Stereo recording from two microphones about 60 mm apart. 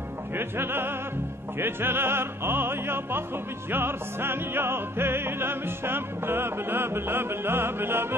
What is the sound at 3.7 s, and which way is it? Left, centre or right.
Music, right.